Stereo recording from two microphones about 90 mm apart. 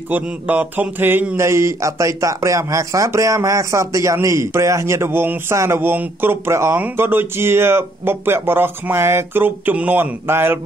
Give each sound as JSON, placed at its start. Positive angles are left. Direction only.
{"t": 0.1, "sound": "speech", "side_deg": -20}